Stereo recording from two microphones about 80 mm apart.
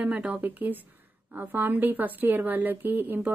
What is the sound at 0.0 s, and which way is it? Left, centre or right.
A woman's voice, centre.